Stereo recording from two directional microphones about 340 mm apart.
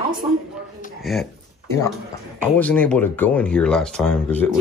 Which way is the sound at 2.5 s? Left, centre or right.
Centre.